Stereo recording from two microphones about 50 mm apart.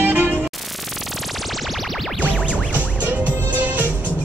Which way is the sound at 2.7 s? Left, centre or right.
Right.